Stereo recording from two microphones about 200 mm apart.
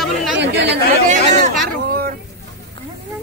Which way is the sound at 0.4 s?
55° right (ahead or behind).